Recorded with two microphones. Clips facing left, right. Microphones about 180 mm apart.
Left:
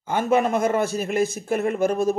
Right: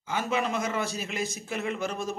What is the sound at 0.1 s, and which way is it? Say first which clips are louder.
Speech: left 8 dB; 55° left (ahead or behind).